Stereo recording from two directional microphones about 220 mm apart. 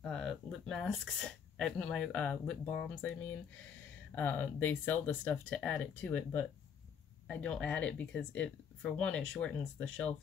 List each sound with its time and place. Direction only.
0.0 s speech: centre (ahead or behind)